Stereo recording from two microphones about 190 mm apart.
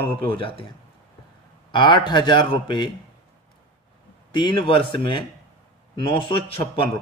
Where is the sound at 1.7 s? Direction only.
25° left (ahead or behind).